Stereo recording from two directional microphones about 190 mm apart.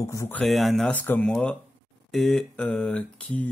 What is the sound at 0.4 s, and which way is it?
Speech, centre (ahead or behind).